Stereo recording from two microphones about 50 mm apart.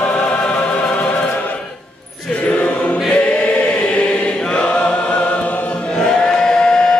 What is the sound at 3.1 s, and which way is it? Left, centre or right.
Choir, left.